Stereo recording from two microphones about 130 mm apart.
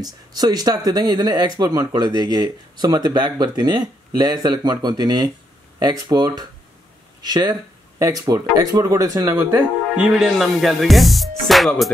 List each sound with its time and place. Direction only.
0.0 s speech: 30° right (ahead or behind)
9.9 s music: 5° right (ahead or behind)